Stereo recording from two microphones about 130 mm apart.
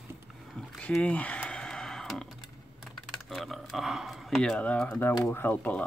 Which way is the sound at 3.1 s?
Centre (ahead or behind).